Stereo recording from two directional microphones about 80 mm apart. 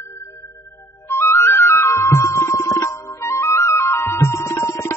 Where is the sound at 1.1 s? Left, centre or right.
Left.